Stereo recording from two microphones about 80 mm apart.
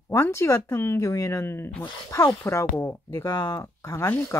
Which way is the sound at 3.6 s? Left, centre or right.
Left.